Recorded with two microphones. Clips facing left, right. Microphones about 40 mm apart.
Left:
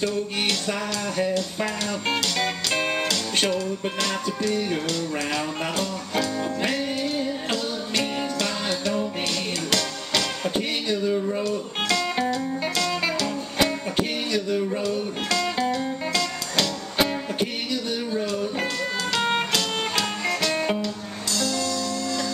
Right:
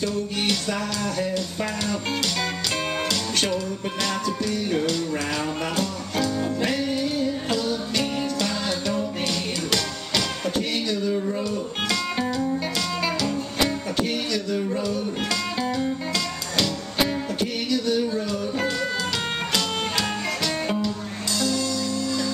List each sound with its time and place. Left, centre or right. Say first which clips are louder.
0.7 s music: right 1 dB; centre
10.5 s music: right 1 dB; left
11.4 s music: left 1 dB; centre
13.9 s music: even; left
14.7 s music: even; centre
17.4 s music: right 2 dB; left
17.9 s music: right 2 dB; centre